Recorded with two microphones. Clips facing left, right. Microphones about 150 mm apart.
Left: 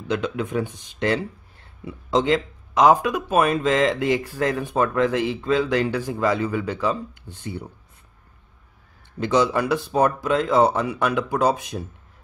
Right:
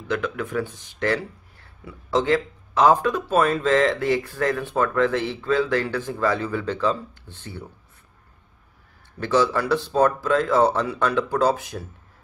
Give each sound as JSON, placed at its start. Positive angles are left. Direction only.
{"t": 0.1, "sound": "speech", "side_deg": 20}
{"t": 9.2, "sound": "speech", "side_deg": 15}